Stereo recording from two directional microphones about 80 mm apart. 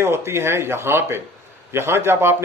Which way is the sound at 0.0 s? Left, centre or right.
Right.